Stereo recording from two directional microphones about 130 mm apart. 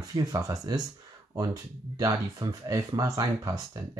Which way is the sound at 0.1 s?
30° right (ahead or behind).